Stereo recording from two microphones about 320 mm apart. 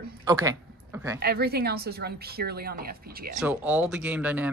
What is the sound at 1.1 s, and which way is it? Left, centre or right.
Speech, right.